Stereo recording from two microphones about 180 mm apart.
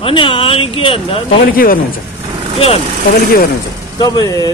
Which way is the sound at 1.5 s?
55° left (ahead or behind).